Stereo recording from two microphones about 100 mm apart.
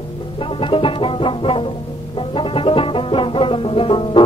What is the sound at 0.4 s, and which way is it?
Music, 60° left (ahead or behind).